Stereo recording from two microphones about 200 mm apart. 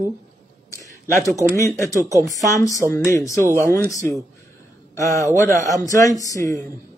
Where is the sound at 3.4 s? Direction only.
15° right (ahead or behind).